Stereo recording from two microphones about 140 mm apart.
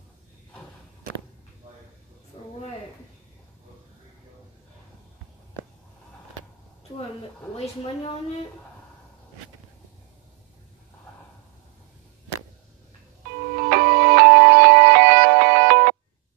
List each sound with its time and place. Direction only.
7.5 s a woman's voice: 45° left (ahead or behind)
13.7 s music: 90° right